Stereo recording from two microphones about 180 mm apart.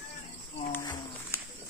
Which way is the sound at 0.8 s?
20° left (ahead or behind).